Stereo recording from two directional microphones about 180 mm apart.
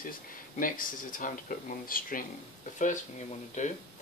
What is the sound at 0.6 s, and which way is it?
Speech, 50° left (ahead or behind).